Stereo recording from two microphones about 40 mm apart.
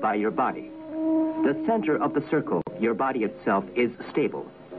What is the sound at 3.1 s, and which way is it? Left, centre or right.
A man's voice, centre.